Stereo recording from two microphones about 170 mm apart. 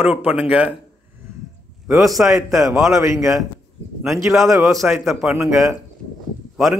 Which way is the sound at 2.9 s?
15° right (ahead or behind).